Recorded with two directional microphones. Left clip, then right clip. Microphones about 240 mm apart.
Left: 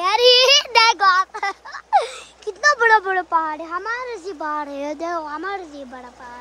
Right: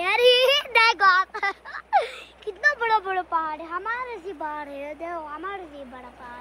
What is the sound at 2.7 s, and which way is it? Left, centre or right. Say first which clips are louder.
A woman's voice: left 7 dB; left.